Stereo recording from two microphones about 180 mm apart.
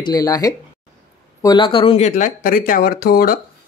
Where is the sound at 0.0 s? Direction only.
20° left (ahead or behind).